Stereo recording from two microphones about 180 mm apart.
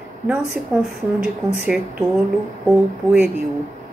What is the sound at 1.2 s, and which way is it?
Speech, 5° right (ahead or behind).